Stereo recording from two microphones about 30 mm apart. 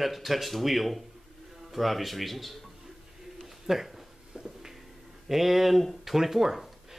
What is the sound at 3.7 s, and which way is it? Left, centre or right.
Speech, centre.